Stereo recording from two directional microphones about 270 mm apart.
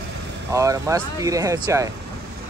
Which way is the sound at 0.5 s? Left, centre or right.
Centre.